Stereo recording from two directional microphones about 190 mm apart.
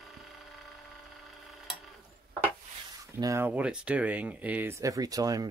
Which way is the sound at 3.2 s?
15° right (ahead or behind).